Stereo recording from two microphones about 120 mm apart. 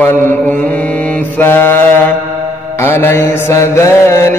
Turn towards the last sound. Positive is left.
turn(degrees=25)  # may be behind; listen again after turning